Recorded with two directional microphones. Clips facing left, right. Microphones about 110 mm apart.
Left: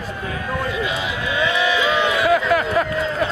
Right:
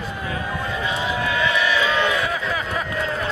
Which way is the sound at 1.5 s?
20° left (ahead or behind).